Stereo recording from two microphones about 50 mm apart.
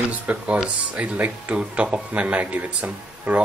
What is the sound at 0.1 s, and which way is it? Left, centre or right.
Speech, right.